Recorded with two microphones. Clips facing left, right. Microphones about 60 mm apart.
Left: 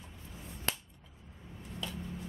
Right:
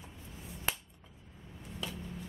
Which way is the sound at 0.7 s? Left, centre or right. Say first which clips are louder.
Right 1 dB; centre.